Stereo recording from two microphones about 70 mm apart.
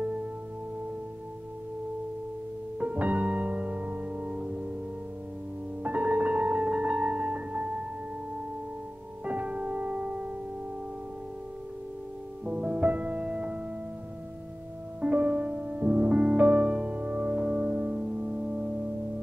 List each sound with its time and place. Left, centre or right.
2.8 s music: right
5.9 s music: right
9.2 s music: centre
12.4 s music: centre
15.0 s music: centre